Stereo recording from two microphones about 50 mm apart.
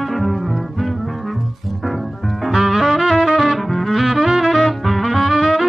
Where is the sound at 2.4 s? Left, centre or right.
Centre.